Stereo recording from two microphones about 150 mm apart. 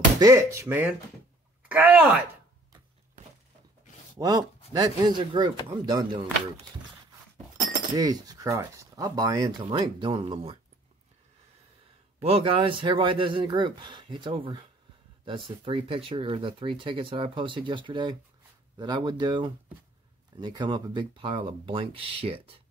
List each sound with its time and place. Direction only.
0.2 s speech: 20° right (ahead or behind)
4.2 s speech: 25° right (ahead or behind)
7.9 s speech: 25° right (ahead or behind)
12.2 s speech: 40° right (ahead or behind)